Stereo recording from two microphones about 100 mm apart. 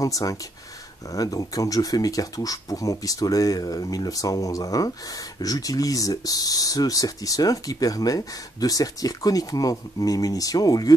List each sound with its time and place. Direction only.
0.0 s speech: 35° left (ahead or behind)